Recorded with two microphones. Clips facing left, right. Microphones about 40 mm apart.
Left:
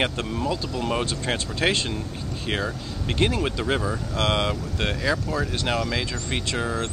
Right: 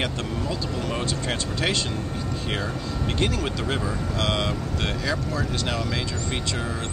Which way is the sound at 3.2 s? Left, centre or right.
Centre.